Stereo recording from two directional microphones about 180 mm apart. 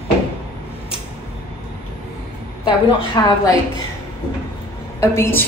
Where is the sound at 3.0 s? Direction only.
20° left (ahead or behind).